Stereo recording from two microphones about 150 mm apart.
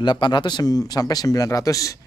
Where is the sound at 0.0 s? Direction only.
30° left (ahead or behind).